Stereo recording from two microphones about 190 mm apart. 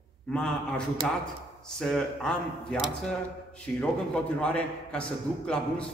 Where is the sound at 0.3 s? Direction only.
5° left (ahead or behind).